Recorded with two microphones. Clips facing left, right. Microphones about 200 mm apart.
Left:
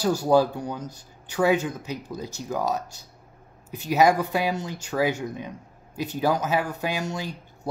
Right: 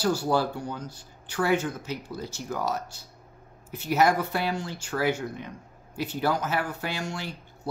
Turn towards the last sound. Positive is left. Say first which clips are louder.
# left 3 dB
turn(degrees=15)  # may be behind; listen again after turning